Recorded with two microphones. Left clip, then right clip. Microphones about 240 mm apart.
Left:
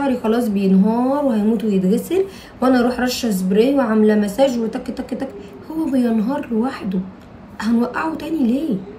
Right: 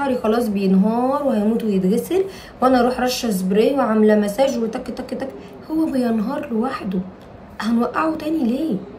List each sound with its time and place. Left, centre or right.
0.0 s a woman's voice: centre